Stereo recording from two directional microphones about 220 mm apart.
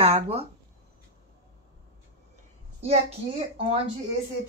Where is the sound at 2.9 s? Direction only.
25° right (ahead or behind).